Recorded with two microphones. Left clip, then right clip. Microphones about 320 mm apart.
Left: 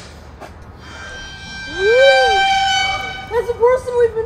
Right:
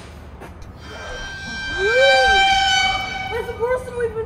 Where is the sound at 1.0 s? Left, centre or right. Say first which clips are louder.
Right 2 dB; centre.